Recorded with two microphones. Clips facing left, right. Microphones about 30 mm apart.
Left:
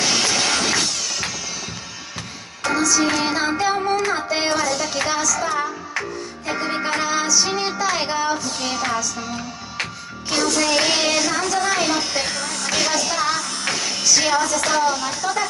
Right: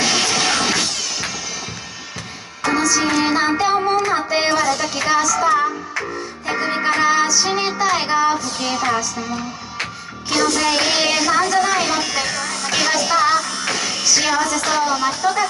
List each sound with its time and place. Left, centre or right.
0.0 s music: centre
2.6 s music: centre
3.6 s child singing: centre
4.1 s music: centre
5.0 s child singing: centre
6.4 s music: centre
10.3 s music: right
10.8 s child singing: centre
11.7 s music: centre
13.7 s music: centre
14.6 s child singing: centre